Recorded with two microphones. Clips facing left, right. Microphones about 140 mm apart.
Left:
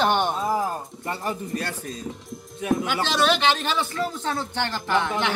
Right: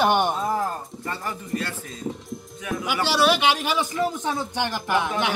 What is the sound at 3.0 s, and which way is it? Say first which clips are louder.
A man's voice: right 3 dB; 10° right (ahead or behind).